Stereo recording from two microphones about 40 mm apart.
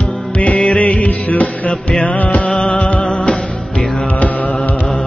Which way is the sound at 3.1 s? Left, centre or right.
Left.